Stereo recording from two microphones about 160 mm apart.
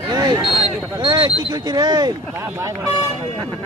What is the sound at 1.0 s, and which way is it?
Speech, 30° right (ahead or behind).